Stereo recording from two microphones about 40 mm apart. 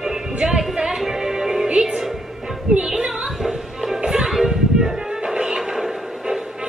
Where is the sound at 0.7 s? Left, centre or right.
Centre.